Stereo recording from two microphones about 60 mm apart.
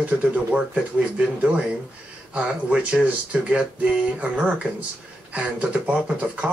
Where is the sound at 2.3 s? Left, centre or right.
Centre.